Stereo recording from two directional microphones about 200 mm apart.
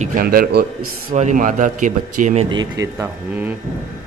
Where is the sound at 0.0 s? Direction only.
45° right (ahead or behind).